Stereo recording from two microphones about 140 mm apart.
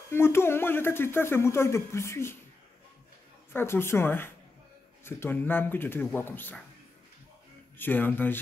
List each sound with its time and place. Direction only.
0.1 s speech: 15° left (ahead or behind)
3.5 s speech: 15° left (ahead or behind)
7.7 s speech: 15° left (ahead or behind)